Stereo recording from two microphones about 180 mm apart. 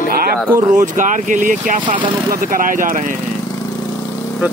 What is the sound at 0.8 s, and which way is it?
Speech, 45° right (ahead or behind).